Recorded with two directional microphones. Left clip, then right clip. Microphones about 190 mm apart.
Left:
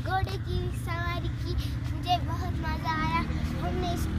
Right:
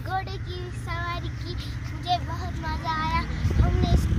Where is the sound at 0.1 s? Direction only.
5° left (ahead or behind).